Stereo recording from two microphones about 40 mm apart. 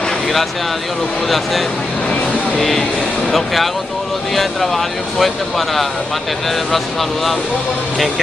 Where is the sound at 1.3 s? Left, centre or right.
Centre.